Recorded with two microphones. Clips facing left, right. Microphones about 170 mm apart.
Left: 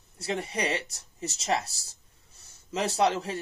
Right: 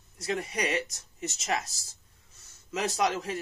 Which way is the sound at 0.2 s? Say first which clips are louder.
Left 1 dB; 30° left (ahead or behind).